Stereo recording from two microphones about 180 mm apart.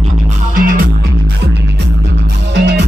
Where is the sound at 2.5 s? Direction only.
70° right (ahead or behind).